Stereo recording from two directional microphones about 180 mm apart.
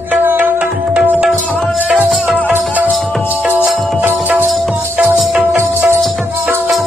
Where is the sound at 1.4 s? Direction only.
5° left (ahead or behind).